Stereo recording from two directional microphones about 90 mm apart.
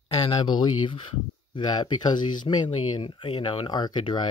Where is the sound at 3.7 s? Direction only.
50° left (ahead or behind).